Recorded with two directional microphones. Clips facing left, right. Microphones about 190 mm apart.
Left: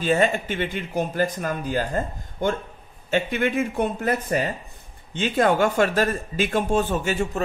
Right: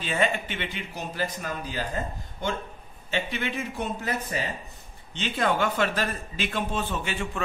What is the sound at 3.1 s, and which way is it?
A man's voice, 50° left (ahead or behind).